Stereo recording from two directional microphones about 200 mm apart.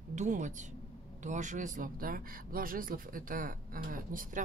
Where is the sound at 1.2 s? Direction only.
40° right (ahead or behind).